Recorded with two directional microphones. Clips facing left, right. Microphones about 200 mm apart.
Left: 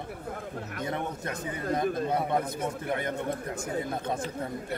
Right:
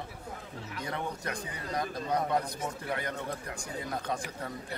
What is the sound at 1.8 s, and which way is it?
Speech, 55° left (ahead or behind).